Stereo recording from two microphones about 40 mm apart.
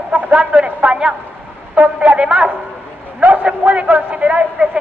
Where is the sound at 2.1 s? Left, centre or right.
Right.